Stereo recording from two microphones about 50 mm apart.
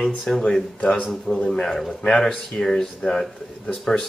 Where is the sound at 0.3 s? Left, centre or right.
Left.